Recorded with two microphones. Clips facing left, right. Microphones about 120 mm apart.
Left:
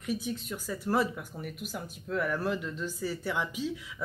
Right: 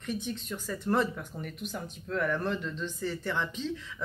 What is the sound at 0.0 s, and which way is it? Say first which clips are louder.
Speech: left 1 dB; 5° left (ahead or behind).